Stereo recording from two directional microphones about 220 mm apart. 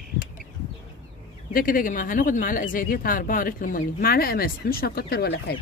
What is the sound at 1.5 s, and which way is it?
Speech, 40° left (ahead or behind).